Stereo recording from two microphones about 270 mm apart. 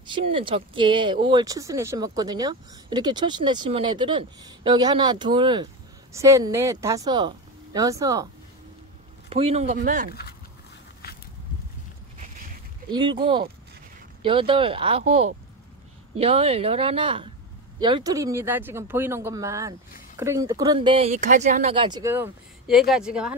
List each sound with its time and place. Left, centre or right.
0.0 s speech: centre
9.3 s speech: right
11.0 s a sound: left
12.9 s speech: centre